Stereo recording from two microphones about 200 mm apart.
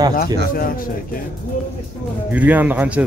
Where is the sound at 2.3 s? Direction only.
10° right (ahead or behind).